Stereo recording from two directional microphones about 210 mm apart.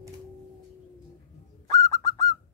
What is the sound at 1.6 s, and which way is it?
Bird, 15° left (ahead or behind).